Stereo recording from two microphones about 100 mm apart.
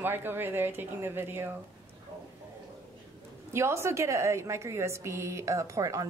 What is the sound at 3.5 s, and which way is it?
A woman's voice, 25° right (ahead or behind).